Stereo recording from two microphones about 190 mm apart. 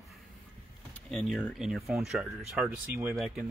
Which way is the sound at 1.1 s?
Centre (ahead or behind).